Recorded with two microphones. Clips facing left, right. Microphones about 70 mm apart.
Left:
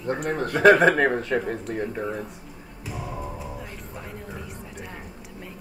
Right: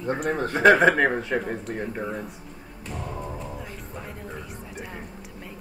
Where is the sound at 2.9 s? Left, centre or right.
Centre.